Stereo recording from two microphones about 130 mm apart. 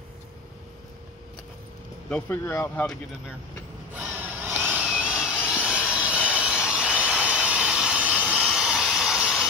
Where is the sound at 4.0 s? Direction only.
10° right (ahead or behind).